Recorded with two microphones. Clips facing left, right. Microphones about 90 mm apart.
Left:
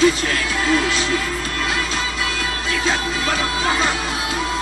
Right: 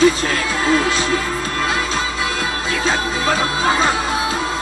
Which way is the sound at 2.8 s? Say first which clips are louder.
Right 3 dB; 30° right (ahead or behind).